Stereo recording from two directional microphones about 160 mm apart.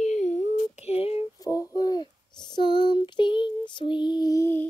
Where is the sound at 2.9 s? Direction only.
30° left (ahead or behind); by 4.7 s 15° left (ahead or behind).